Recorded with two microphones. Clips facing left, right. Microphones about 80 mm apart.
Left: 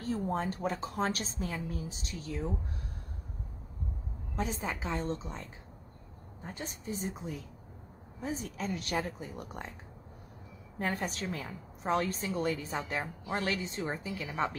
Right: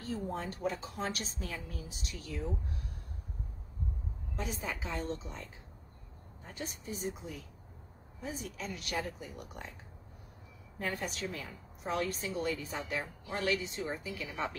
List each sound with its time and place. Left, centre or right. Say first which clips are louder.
0.1 s a woman's voice: left 5 dB; left
4.4 s a woman's voice: left 4 dB; left
6.4 s a woman's voice: left 2 dB; left
8.2 s a woman's voice: left 4 dB; left
10.8 s a woman's voice: left 3 dB; left